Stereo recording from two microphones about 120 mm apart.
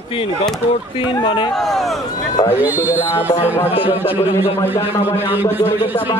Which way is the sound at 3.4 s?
20° left (ahead or behind).